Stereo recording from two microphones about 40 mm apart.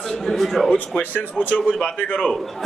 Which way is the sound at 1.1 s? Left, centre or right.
Left.